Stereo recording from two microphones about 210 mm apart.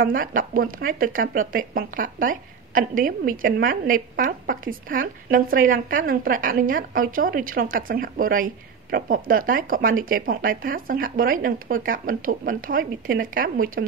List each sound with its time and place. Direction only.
0.0 s speech: 40° right (ahead or behind)